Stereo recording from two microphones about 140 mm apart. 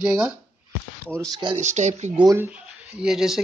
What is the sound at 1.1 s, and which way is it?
Speech, 25° right (ahead or behind).